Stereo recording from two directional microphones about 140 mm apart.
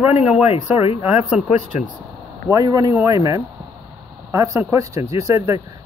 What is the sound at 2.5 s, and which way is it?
Speech, 25° right (ahead or behind).